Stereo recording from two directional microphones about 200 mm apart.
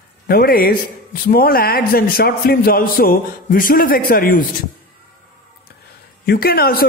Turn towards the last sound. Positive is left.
turn(degrees=50)  # may be behind; listen again after turning